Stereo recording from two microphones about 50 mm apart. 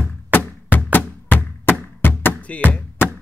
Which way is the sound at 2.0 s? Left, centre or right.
Left.